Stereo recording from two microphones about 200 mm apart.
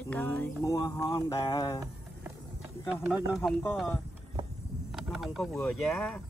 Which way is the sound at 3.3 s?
Centre (ahead or behind).